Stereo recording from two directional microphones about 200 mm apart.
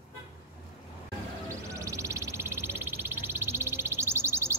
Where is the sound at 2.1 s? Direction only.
10° right (ahead or behind).